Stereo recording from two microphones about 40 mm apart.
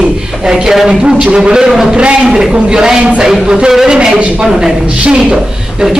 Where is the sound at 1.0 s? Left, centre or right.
Right.